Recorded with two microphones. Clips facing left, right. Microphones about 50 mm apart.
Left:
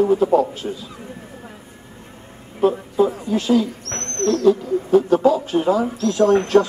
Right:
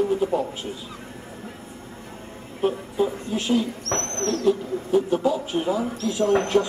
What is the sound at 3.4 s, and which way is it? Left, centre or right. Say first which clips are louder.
Speech: left 5 dB; right.